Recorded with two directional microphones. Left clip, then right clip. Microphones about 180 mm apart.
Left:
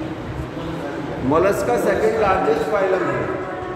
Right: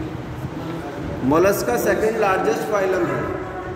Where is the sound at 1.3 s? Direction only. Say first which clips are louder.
Even; 35° right (ahead or behind).